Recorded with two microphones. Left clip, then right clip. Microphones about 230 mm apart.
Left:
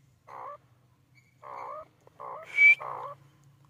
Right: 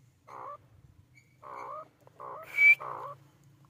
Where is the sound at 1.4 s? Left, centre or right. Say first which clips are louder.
Left 2 dB; centre.